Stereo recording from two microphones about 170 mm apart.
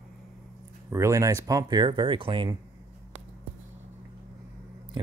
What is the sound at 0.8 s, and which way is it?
Speech, 15° right (ahead or behind).